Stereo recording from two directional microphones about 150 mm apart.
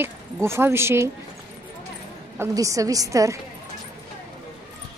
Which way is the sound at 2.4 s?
20° right (ahead or behind).